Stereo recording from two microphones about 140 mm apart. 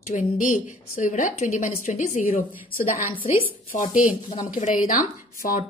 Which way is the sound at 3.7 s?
65° left (ahead or behind).